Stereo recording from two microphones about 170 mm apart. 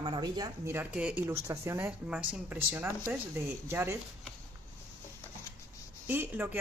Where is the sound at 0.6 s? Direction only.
10° right (ahead or behind).